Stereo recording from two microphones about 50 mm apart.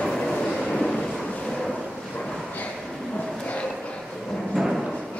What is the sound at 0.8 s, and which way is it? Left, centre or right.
Vehicle, centre.